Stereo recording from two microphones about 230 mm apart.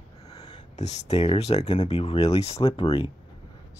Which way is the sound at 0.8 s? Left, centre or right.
Left.